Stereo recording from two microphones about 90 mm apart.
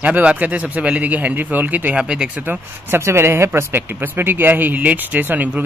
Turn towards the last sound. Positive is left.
turn(degrees=-20)  # may be behind; listen again after turning